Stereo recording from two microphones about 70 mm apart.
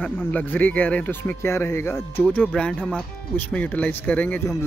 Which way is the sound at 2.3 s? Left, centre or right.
Centre.